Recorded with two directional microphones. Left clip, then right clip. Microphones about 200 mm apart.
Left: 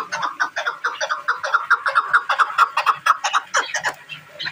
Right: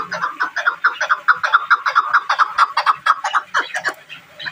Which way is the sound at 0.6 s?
20° left (ahead or behind).